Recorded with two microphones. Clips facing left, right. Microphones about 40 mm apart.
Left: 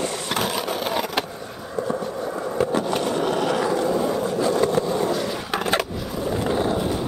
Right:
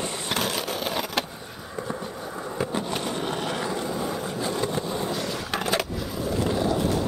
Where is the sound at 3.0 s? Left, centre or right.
Centre.